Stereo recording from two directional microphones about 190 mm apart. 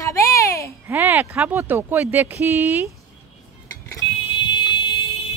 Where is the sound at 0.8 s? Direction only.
10° right (ahead or behind).